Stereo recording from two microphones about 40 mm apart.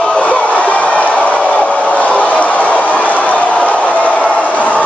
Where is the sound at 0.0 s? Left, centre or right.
Left.